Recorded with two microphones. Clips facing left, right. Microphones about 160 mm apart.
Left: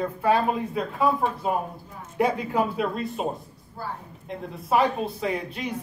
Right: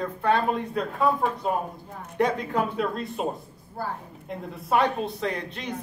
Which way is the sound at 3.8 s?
55° right (ahead or behind).